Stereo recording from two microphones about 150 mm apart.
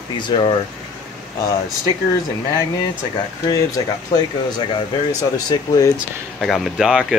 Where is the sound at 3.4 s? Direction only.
25° left (ahead or behind).